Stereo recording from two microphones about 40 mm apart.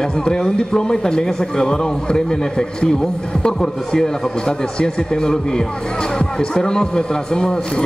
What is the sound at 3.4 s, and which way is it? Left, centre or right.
A man's voice, centre.